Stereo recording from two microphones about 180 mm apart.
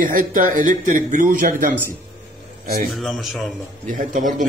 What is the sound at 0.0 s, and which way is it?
Speech, 50° right (ahead or behind).